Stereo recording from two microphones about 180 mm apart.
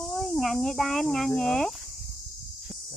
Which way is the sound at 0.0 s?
Centre (ahead or behind).